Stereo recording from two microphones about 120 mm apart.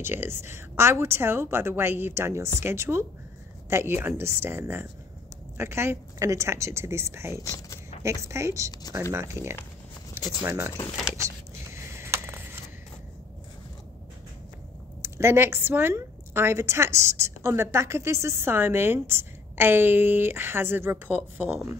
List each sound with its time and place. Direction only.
0.0 s a woman's voice: 20° right (ahead or behind)
7.3 s speech: 25° left (ahead or behind)
8.0 s a woman's voice: 25° right (ahead or behind)
11.7 s a sound: 20° right (ahead or behind)
15.0 s a woman's voice: 20° right (ahead or behind)